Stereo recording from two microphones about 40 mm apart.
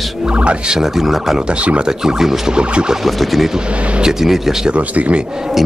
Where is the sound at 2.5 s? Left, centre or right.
Right.